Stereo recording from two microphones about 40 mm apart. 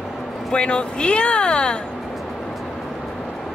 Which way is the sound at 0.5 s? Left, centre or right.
Left.